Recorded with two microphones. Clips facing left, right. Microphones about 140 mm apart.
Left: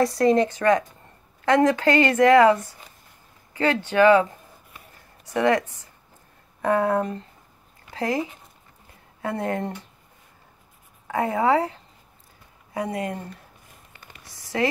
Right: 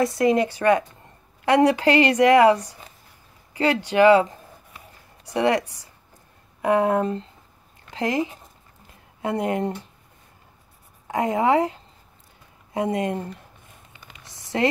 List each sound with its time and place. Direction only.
0.0 s a woman's voice: centre (ahead or behind)
11.1 s speech: 20° right (ahead or behind)
12.7 s speech: 25° right (ahead or behind)
14.3 s a sound: 25° right (ahead or behind)